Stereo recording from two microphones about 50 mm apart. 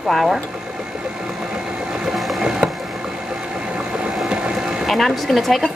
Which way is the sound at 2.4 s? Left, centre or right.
Centre.